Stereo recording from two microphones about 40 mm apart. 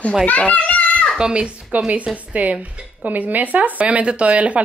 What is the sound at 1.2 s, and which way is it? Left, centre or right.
Speech, right.